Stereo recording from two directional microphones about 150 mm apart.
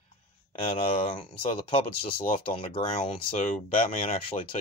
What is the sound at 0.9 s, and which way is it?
Speech, 35° left (ahead or behind).